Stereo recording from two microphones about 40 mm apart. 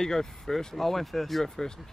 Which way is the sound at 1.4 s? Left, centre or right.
Centre.